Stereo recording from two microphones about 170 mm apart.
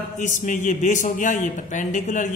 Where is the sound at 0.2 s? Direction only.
50° left (ahead or behind).